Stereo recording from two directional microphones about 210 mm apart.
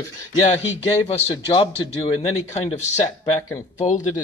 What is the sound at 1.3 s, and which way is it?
Speech, 25° left (ahead or behind).